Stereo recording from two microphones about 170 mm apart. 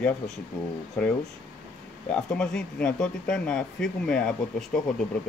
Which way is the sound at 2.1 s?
5° left (ahead or behind).